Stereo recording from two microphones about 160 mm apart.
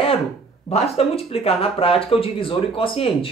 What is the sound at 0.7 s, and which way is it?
Speech, 40° left (ahead or behind).